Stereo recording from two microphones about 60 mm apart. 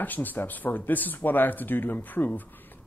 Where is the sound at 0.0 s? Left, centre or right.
Left.